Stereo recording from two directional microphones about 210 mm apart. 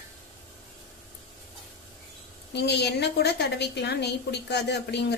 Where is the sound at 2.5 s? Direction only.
55° left (ahead or behind).